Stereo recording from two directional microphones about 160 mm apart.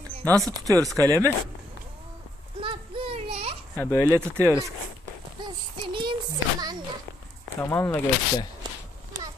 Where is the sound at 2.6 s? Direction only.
35° right (ahead or behind).